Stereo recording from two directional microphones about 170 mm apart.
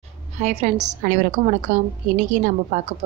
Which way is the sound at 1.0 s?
60° right (ahead or behind).